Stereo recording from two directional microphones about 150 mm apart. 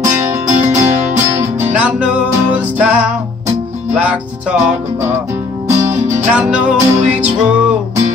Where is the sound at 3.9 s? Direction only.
10° right (ahead or behind).